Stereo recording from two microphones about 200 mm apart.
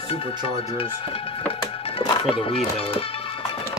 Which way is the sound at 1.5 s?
25° left (ahead or behind).